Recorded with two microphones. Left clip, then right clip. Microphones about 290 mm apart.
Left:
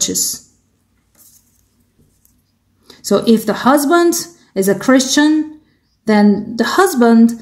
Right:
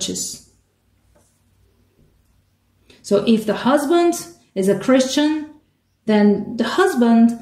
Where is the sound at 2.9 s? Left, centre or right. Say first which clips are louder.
Left 4 dB; left.